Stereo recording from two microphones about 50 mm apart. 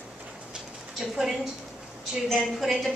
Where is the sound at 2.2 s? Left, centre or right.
Centre.